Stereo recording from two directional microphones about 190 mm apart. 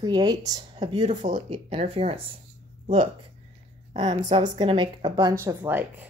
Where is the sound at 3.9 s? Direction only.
25° right (ahead or behind).